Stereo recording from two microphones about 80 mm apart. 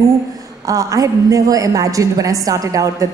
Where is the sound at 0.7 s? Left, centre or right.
Right.